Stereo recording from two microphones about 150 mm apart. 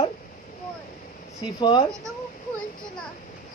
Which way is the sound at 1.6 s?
30° left (ahead or behind).